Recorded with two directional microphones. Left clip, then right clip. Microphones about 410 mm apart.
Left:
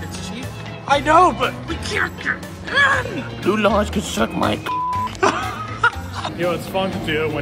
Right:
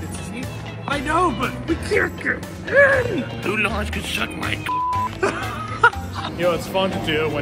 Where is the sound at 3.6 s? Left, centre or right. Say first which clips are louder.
Left 6 dB; centre.